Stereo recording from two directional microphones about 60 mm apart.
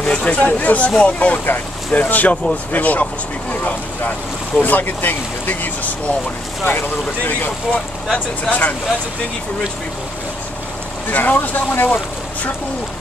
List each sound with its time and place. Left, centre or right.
0.0 s speech: left
4.6 s speech: left
7.7 s speech: left
11.1 s speech: left